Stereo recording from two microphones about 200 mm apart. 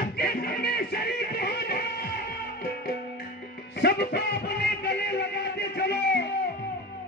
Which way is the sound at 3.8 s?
55° left (ahead or behind).